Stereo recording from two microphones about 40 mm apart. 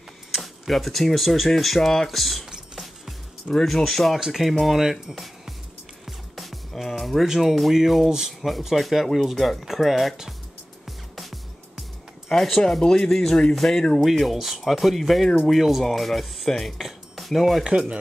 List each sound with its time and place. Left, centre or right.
0.3 s speech: centre
2.5 s music: centre
3.6 s speech: centre
5.1 s music: centre
7.2 s speech: centre
8.3 s speech: centre
10.9 s music: centre
12.3 s speech: centre
14.0 s speech: centre
17.6 s speech: centre